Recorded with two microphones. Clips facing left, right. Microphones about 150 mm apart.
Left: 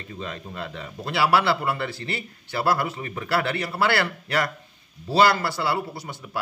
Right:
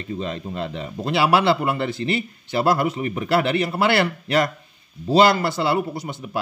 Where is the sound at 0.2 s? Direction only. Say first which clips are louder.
Right 3 dB; 25° right (ahead or behind).